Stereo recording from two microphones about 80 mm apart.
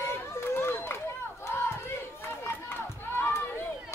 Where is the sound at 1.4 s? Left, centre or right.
Left.